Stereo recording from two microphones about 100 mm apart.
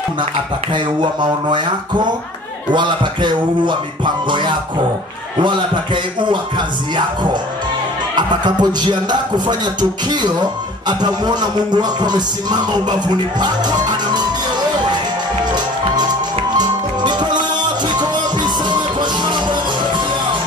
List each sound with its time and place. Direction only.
0.7 s music: 50° right (ahead or behind)
8.2 s music: 45° right (ahead or behind)
16.5 s music: 45° right (ahead or behind)